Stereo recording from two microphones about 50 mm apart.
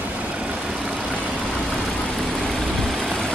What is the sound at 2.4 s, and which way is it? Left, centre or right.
Vehicle, centre.